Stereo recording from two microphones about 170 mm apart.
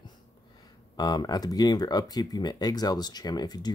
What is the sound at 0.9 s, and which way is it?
Speech, 25° left (ahead or behind).